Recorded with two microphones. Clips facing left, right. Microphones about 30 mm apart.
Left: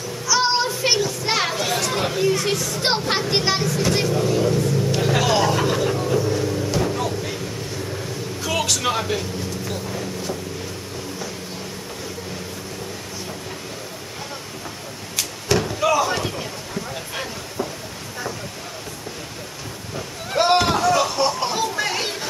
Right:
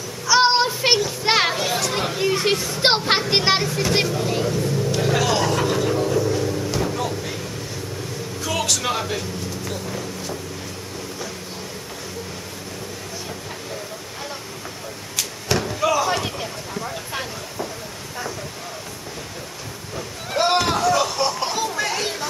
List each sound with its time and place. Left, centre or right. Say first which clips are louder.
0.3 s child singing: right 3 dB; right
1.2 s children playing: right 3 dB; right
1.6 s chatter: even; centre
2.2 s speech: right 3 dB; right
4.5 s vehicle: left 2 dB; centre
8.5 s speech: left 1 dB; centre
9.7 s vehicle: left 1 dB; centre
15.1 s slam: left 2 dB; centre
16.1 s a sound: right 1 dB; centre
20.2 s a sound: left 2 dB; centre
21.7 s music: even; centre